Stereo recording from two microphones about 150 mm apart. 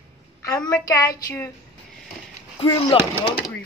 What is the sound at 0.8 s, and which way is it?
Speech, 20° left (ahead or behind).